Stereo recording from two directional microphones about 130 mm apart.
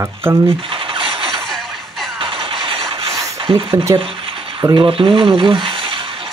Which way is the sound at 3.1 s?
25° right (ahead or behind).